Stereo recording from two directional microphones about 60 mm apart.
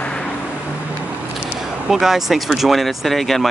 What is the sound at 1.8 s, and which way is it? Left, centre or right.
Speech, centre.